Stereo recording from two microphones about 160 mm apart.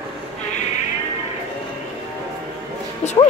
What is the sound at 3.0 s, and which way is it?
Music, 45° left (ahead or behind).